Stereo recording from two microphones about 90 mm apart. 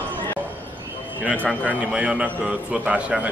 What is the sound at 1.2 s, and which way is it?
A man's voice, 15° right (ahead or behind).